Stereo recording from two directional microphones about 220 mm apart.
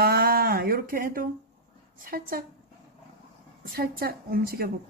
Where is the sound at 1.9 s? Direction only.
40° right (ahead or behind).